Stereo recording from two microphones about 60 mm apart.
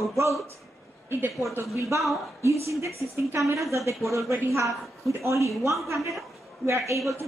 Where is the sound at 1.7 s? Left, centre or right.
Right.